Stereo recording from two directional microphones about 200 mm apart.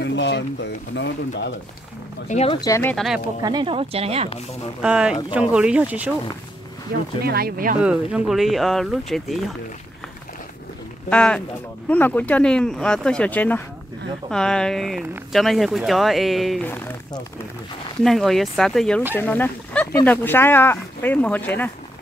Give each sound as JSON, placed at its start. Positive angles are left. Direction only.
{"t": 0.0, "sound": "speech", "side_deg": 60}
{"t": 2.2, "sound": "speech", "side_deg": 30}
{"t": 2.6, "sound": "speech", "side_deg": 15}
{"t": 3.4, "sound": "speech", "side_deg": -25}
{"t": 4.8, "sound": "speech", "side_deg": -5}
{"t": 6.9, "sound": "speech", "side_deg": -50}
{"t": 7.8, "sound": "speech", "side_deg": -5}
{"t": 11.1, "sound": "speech", "side_deg": 5}
{"t": 18.0, "sound": "speech", "side_deg": 0}